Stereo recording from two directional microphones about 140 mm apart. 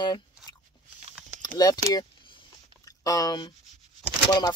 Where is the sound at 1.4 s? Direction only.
30° left (ahead or behind).